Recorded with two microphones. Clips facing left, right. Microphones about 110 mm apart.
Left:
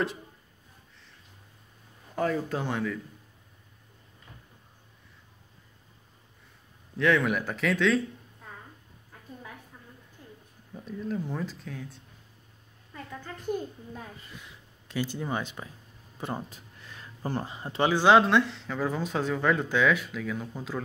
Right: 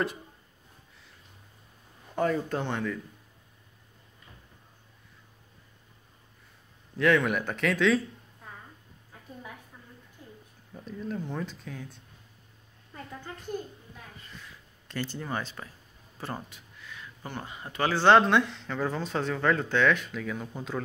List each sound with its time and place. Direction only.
2.1 s speech: centre (ahead or behind)
7.0 s speech: centre (ahead or behind)
10.7 s speech: 5° left (ahead or behind)
14.3 s a sound: 15° left (ahead or behind)
14.9 s speech: 10° left (ahead or behind)
16.4 s a sound: 40° left (ahead or behind)
17.8 s speech: 15° left (ahead or behind)
18.1 s speech: centre (ahead or behind)